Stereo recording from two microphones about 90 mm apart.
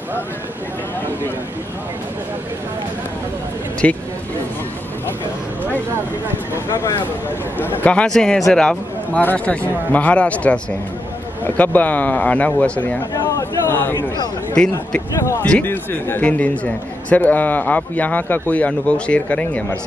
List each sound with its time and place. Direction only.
3.8 s a man's voice: 15° left (ahead or behind)
6.5 s speech: 30° left (ahead or behind)
7.5 s a man's voice: 20° left (ahead or behind)
13.4 s speech: 25° left (ahead or behind)
14.5 s a man's voice: 10° left (ahead or behind)
15.6 s a man's voice: 25° left (ahead or behind)